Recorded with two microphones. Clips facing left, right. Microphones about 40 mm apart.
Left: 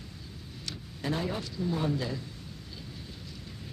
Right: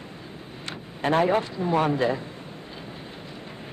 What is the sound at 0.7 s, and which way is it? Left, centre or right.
Vehicle, right.